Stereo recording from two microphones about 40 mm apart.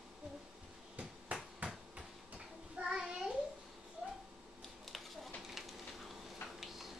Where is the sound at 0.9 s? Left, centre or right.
Right.